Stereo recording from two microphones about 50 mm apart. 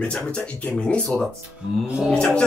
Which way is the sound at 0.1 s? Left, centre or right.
Left.